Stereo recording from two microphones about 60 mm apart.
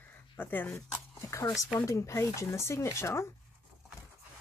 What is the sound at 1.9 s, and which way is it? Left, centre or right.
Speech, left.